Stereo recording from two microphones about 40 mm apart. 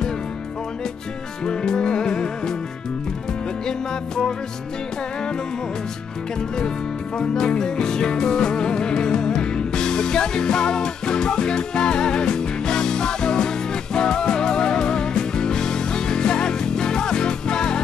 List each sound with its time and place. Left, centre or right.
1.4 s music: centre
7.2 s music: centre